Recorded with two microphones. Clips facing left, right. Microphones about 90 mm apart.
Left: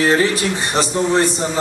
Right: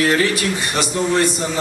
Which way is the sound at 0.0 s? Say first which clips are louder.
Left 2 dB; 30° left (ahead or behind).